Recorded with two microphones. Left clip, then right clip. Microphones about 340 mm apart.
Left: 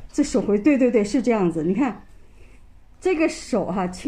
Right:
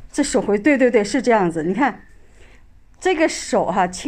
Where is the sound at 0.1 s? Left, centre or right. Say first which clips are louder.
Right 2 dB; right.